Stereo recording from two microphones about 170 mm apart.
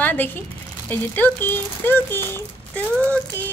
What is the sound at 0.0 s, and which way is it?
Speech, 10° left (ahead or behind).